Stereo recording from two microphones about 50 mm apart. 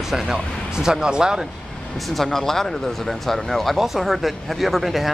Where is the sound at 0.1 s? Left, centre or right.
Centre.